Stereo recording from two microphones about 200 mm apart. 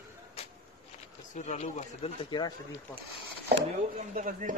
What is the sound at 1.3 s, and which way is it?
Speech, 35° left (ahead or behind).